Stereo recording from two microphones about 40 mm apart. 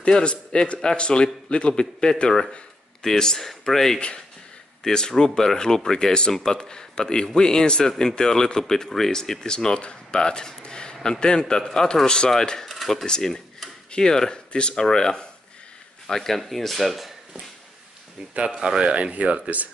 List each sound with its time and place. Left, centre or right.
0.1 s speech: left
12.7 s dishes: centre
13.0 s speech: centre
18.3 s speech: right